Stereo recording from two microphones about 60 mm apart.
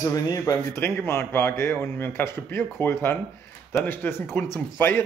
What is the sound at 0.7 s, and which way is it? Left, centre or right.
A man's voice, left.